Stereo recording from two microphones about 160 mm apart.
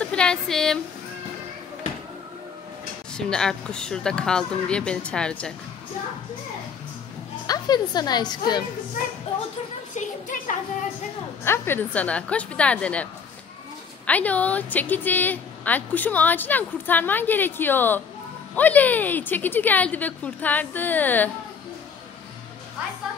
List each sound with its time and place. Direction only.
0.0 s a sound: 5° left (ahead or behind)
3.2 s speech: 5° left (ahead or behind)
7.4 s a woman's voice: 25° left (ahead or behind)
9.9 s speech: 55° left (ahead or behind)
11.4 s a woman's voice: 15° left (ahead or behind)